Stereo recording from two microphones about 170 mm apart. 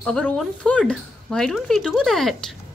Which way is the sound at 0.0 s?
5° left (ahead or behind).